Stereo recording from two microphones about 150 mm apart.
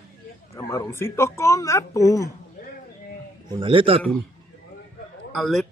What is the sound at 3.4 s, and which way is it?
Speech, 35° right (ahead or behind).